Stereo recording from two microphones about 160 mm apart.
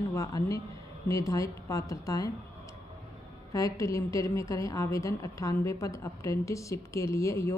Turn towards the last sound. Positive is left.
turn(degrees=20)  # may be behind; listen again after turning